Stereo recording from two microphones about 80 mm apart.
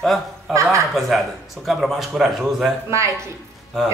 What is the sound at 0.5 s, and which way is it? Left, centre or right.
Speech, right.